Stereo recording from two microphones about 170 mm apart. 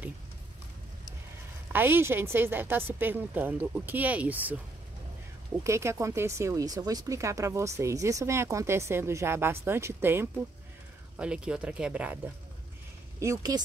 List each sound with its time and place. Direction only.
1.7 s speech: 10° right (ahead or behind)
5.6 s speech: 15° right (ahead or behind)
13.2 s speech: 20° right (ahead or behind)